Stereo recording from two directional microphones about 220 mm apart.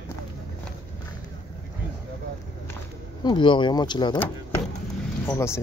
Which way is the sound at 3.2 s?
20° left (ahead or behind).